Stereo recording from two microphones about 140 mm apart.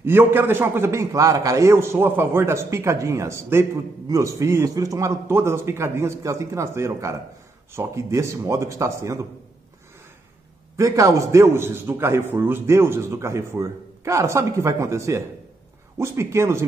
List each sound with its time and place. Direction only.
0.0 s a man's voice: 15° right (ahead or behind)
10.8 s a man's voice: 25° right (ahead or behind)